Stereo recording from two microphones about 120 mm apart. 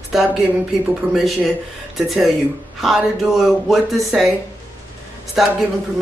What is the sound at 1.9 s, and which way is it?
Speech, centre (ahead or behind).